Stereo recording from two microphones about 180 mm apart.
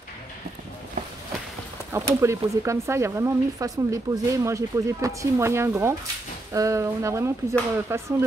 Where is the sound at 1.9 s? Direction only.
15° right (ahead or behind).